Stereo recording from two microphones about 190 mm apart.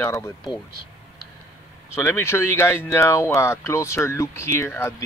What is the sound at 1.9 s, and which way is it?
Speech, 15° left (ahead or behind).